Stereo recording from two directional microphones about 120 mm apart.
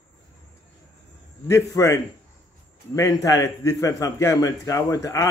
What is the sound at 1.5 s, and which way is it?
A man's voice, 25° left (ahead or behind).